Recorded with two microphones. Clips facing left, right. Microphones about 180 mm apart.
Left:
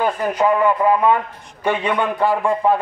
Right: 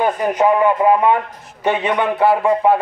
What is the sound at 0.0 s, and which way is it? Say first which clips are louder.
Speech: right 2 dB; 15° right (ahead or behind).